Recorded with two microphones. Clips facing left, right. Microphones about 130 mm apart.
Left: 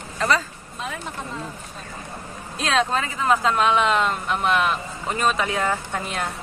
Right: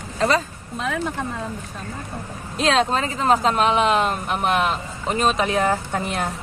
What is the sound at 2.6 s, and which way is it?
Speech, 30° right (ahead or behind).